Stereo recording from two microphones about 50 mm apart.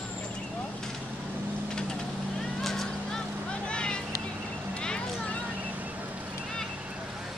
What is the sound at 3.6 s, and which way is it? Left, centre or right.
Vehicle, centre.